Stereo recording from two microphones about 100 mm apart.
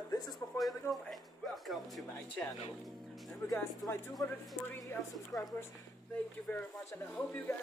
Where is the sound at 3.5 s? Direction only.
30° left (ahead or behind).